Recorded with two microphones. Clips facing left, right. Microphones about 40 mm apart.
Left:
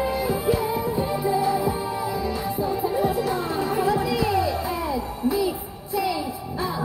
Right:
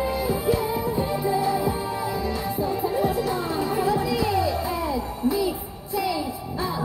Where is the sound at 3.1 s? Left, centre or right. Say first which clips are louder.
Left 1 dB; left.